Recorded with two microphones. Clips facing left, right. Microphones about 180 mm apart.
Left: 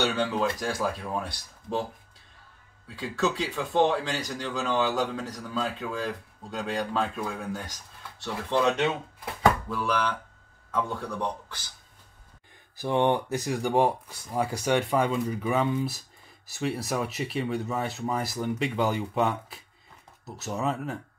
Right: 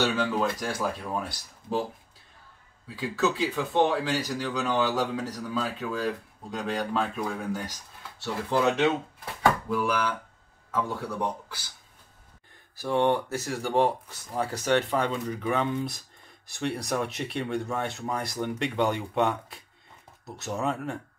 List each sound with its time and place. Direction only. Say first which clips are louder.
0.0 s speech: even; centre (ahead or behind)
3.0 s speech: right 1 dB; centre (ahead or behind)
8.2 s speech: even; 5° right (ahead or behind)
12.7 s speech: even; 20° left (ahead or behind); by 21.0 s centre (ahead or behind)